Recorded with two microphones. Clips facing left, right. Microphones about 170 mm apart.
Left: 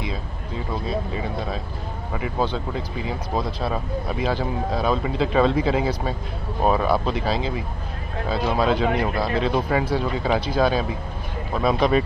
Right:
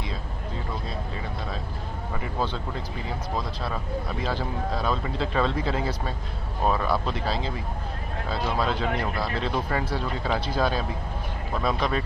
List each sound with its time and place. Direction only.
0.8 s speech: 10° left (ahead or behind)
2.7 s speech: 10° left (ahead or behind)